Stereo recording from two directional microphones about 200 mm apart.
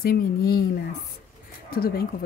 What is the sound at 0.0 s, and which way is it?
Speech, 50° left (ahead or behind).